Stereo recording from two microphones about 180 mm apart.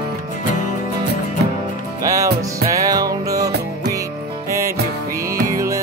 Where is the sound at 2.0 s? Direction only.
15° right (ahead or behind).